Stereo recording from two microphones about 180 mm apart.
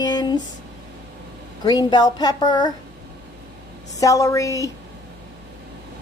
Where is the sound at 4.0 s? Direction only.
20° left (ahead or behind).